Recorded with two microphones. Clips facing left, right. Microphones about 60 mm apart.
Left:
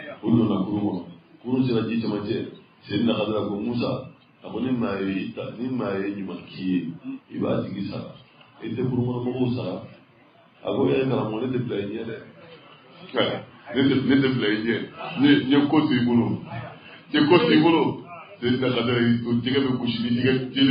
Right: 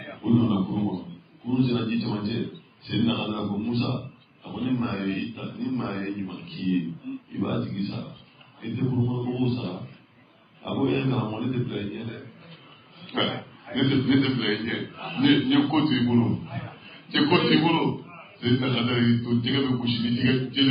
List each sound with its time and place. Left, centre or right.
0.2 s a sound: centre
1.5 s a man's voice: centre
13.1 s a man's voice: centre
13.7 s a man's voice: centre
14.3 s a man's voice: centre
15.0 s a man's voice: centre